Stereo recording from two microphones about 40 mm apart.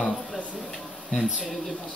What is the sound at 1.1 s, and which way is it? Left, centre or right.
Speech, centre.